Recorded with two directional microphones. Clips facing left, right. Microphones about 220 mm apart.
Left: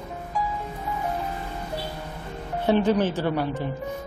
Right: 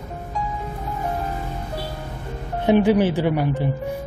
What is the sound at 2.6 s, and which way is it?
Speech, 15° right (ahead or behind).